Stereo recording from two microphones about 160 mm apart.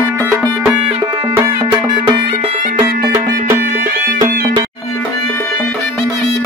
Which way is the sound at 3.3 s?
60° right (ahead or behind).